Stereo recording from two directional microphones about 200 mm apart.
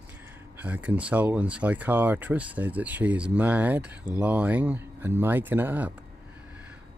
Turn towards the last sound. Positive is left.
turn(degrees=-10)  # may be behind; listen again after turning